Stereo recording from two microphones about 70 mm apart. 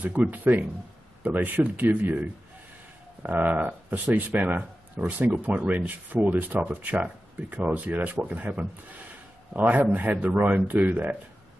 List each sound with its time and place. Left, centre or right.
0.0 s speech: right